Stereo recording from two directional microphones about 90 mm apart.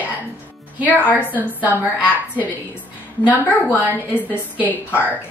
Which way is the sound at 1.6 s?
20° right (ahead or behind).